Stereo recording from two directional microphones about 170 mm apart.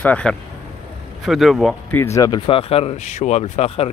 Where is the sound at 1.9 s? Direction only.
15° left (ahead or behind).